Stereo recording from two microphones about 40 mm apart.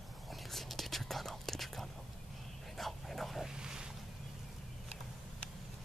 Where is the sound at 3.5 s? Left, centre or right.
Centre.